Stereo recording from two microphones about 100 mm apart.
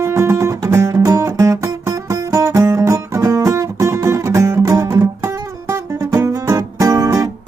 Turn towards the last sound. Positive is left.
turn(degrees=-35)  # may be behind; listen again after turning